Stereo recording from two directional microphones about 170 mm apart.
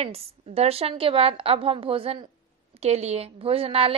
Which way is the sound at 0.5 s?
35° right (ahead or behind).